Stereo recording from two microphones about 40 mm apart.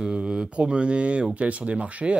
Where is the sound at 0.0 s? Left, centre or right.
Right.